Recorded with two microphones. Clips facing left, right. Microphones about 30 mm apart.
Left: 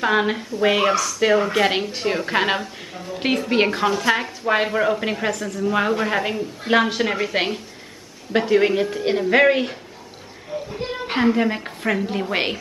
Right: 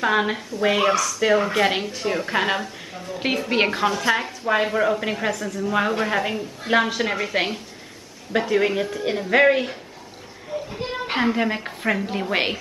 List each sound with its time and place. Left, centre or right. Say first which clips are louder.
0.0 s a woman's voice: left 1 dB; centre
2.3 s speech: left 2 dB; centre
2.6 s a woman's voice: left 1 dB; centre
8.3 s a woman's voice: left 3 dB; centre